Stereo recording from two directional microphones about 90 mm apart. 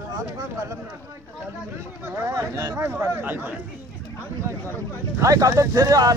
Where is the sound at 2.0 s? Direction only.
30° right (ahead or behind).